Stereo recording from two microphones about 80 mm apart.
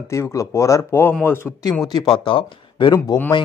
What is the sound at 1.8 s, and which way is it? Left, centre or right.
Speech, left.